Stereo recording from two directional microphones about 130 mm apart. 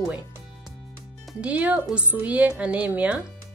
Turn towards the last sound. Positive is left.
turn(degrees=-10)  # may be behind; listen again after turning